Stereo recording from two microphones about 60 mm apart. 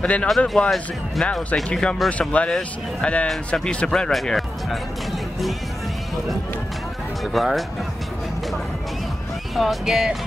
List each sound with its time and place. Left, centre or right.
0.0 s speech: left
4.1 s speech: centre
7.3 s speech: centre
9.6 s speech: centre